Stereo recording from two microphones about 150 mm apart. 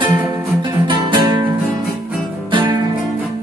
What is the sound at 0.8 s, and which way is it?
Music, 30° right (ahead or behind).